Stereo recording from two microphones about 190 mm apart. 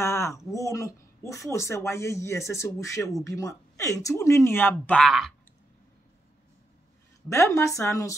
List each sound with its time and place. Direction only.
0.0 s a sound: 15° left (ahead or behind)
0.5 s speech: 15° left (ahead or behind)
7.2 s speech: 15° left (ahead or behind)